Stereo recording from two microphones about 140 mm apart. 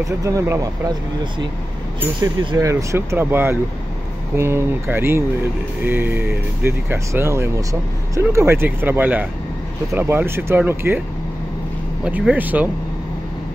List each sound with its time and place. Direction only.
0.2 s speech: 25° right (ahead or behind)
2.0 s speech: 25° right (ahead or behind)
12.0 s speech: 10° right (ahead or behind)